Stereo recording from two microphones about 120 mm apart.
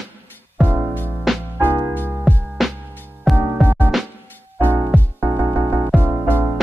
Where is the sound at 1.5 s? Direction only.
20° right (ahead or behind).